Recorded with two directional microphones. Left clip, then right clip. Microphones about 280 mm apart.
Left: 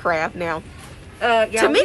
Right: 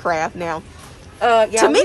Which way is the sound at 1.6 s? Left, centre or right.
Centre.